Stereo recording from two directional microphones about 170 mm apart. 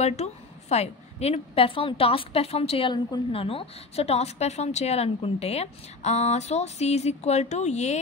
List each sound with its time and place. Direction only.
0.0 s a woman's voice: 40° left (ahead or behind)